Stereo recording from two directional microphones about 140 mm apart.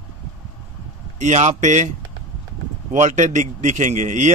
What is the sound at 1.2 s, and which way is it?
Speech, 55° right (ahead or behind).